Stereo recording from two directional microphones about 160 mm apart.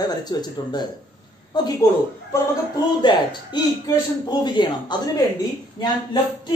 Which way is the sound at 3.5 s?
25° left (ahead or behind).